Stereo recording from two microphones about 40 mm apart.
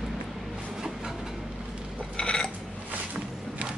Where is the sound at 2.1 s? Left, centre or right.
Left.